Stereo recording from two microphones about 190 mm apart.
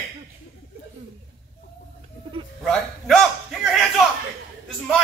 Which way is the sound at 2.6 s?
5° left (ahead or behind).